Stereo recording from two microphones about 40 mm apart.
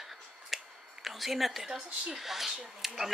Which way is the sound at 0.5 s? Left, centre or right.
Centre.